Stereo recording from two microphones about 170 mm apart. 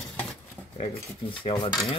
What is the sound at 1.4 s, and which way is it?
Speech, 30° left (ahead or behind).